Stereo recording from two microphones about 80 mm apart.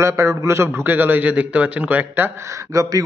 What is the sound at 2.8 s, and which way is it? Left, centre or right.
Speech, right.